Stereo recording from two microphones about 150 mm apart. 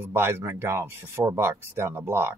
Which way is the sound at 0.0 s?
15° right (ahead or behind).